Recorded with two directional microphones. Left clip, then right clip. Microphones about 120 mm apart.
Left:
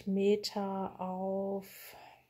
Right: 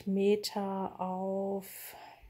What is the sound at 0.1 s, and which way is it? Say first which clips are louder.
Speech: right 1 dB; 40° right (ahead or behind).